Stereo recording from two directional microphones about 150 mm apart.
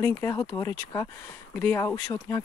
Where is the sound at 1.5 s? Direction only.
10° left (ahead or behind).